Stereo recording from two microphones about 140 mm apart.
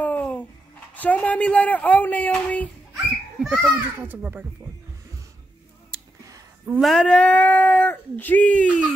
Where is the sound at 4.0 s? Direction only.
10° right (ahead or behind).